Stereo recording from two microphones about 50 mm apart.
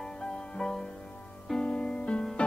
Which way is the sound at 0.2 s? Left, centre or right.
Centre.